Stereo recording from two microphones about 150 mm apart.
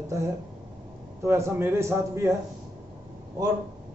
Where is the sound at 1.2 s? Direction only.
15° right (ahead or behind).